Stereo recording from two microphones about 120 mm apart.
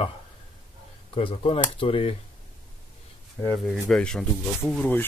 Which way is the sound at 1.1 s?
50° left (ahead or behind).